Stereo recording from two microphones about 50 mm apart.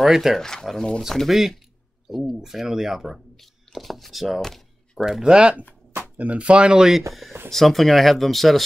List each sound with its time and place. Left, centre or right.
0.0 s speech: centre
0.4 s speech: centre
1.1 s speech: centre
4.9 s speech: centre
6.1 s speech: right; by 7.1 s centre
7.5 s speech: centre